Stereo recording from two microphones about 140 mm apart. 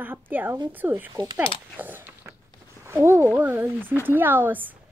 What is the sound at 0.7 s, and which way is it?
Speech, 15° right (ahead or behind).